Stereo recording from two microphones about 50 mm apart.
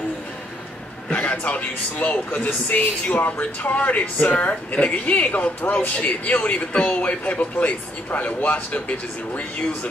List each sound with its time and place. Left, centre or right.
1.4 s speech: left